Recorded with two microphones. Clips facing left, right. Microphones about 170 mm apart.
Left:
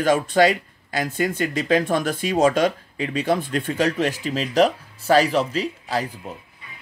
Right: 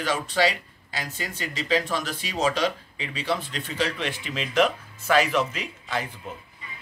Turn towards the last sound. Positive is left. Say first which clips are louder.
# left 7 dB
turn(degrees=35)  # may be behind; listen again after turning